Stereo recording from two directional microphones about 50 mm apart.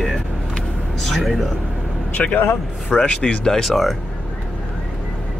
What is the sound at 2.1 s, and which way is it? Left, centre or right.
Speech, left.